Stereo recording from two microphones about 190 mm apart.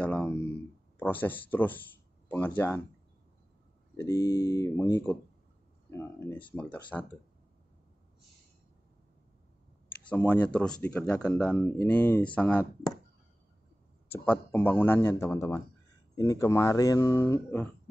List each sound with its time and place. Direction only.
0.0 s speech: 5° left (ahead or behind)
3.9 s speech: 15° left (ahead or behind)
10.0 s speech: 5° left (ahead or behind)
14.1 s speech: 10° left (ahead or behind)